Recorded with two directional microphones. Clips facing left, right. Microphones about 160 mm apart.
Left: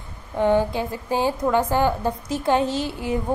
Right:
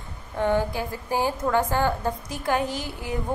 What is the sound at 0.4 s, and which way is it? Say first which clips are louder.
A woman's voice: left 4 dB; 15° left (ahead or behind).